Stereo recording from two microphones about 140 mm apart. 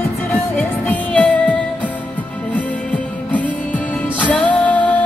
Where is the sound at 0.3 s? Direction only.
10° left (ahead or behind).